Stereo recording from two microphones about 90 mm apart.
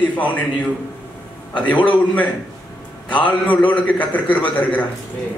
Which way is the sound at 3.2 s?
15° left (ahead or behind).